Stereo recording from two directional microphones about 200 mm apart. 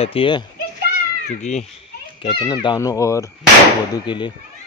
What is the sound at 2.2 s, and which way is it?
Speech, 25° left (ahead or behind).